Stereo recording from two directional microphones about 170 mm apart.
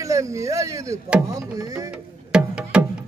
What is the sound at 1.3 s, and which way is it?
Music, 20° right (ahead or behind).